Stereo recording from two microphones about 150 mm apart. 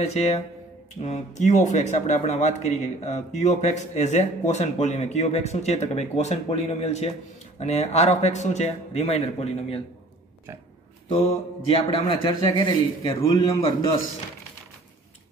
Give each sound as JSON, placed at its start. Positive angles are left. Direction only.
{"t": 0.0, "sound": "speech", "side_deg": 45}
{"t": 11.1, "sound": "mantra", "side_deg": 35}
{"t": 12.4, "sound": "a man's voice", "side_deg": 25}